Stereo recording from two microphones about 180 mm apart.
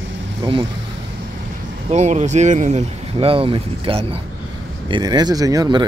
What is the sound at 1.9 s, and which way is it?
Speech, 40° right (ahead or behind).